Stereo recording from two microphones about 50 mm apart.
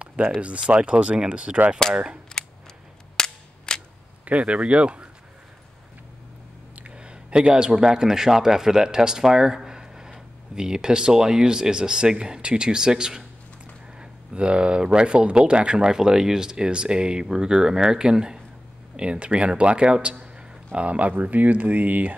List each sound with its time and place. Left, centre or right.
0.4 s speech: right
2.4 s a sound: centre
3.2 s cap gun: centre
4.2 s speech: right
6.7 s a man's voice: right